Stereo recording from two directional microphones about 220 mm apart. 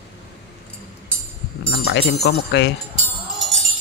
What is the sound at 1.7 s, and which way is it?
Speech, 50° left (ahead or behind).